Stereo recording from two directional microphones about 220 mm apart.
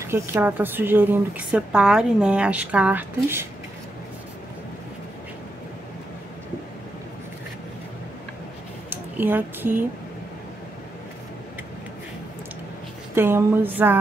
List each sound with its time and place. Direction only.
0.0 s a woman's voice: 10° right (ahead or behind)
8.9 s speech: 10° right (ahead or behind)
13.1 s a woman's voice: 10° right (ahead or behind)